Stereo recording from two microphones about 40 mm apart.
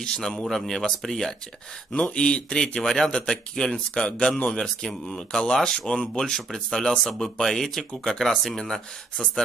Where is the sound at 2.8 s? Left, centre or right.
Centre.